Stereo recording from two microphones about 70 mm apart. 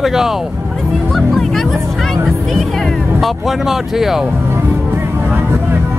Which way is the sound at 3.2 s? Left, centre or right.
Centre.